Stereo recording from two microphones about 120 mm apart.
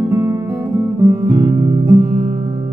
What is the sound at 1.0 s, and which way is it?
Guitar, 25° right (ahead or behind).